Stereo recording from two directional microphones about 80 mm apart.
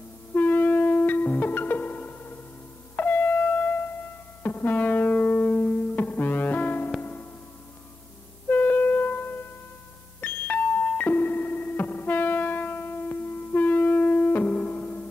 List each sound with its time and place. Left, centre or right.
0.3 s music: left
8.5 s music: left